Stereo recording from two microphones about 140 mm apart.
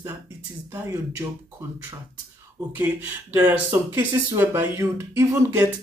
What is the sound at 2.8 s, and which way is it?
Speech, 10° right (ahead or behind).